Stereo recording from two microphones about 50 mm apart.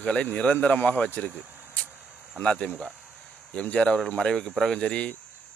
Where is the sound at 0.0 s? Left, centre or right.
Left.